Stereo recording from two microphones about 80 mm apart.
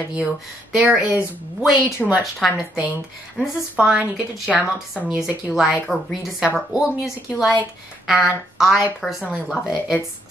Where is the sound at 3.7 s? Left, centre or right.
Centre.